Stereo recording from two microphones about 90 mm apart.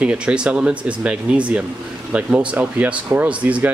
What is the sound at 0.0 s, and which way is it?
Speech, 10° right (ahead or behind).